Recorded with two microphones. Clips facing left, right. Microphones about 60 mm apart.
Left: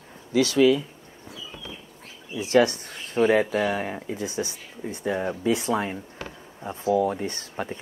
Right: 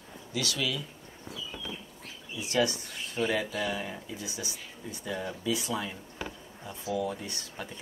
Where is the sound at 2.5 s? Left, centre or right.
Left.